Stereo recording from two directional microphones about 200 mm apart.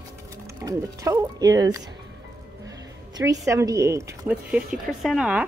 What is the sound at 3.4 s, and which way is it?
Speech, 15° right (ahead or behind).